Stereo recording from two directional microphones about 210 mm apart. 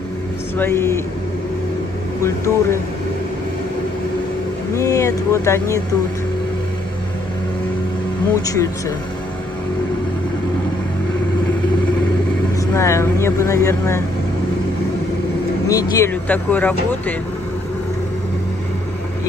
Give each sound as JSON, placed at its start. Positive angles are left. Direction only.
{"t": 0.6, "sound": "speech", "side_deg": 10}
{"t": 2.2, "sound": "speech", "side_deg": 15}
{"t": 4.7, "sound": "speech", "side_deg": 15}
{"t": 8.4, "sound": "speech", "side_deg": 15}
{"t": 12.5, "sound": "speech", "side_deg": 15}
{"t": 15.7, "sound": "speech", "side_deg": 15}